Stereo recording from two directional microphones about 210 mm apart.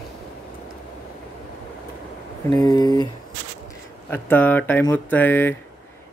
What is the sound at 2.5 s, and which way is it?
Speech, 20° left (ahead or behind).